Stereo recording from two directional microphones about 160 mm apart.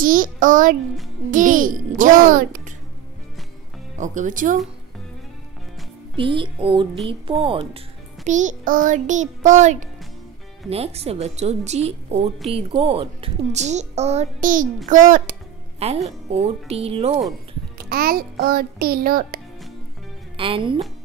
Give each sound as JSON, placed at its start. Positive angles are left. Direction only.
{"t": 0.0, "sound": "a child's voice", "side_deg": -60}
{"t": 4.0, "sound": "speech", "side_deg": -50}
{"t": 6.1, "sound": "a woman's voice", "side_deg": -30}
{"t": 8.3, "sound": "speech", "side_deg": -50}
{"t": 10.7, "sound": "a woman's voice", "side_deg": -40}
{"t": 15.8, "sound": "a woman's voice", "side_deg": -40}
{"t": 17.8, "sound": "a child's voice", "side_deg": -70}
{"t": 20.3, "sound": "a woman's voice", "side_deg": -35}